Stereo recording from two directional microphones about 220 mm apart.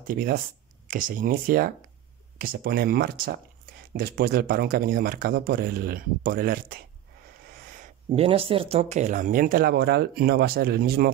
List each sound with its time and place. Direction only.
0.0 s speech: 40° right (ahead or behind)
8.1 s speech: 25° right (ahead or behind); by 11.1 s 45° right (ahead or behind)